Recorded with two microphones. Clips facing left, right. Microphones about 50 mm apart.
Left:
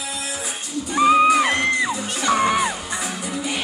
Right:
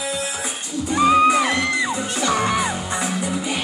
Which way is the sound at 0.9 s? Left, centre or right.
Centre.